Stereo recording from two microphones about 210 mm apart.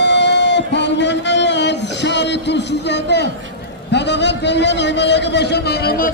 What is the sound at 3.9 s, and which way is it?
A man's voice, 55° left (ahead or behind).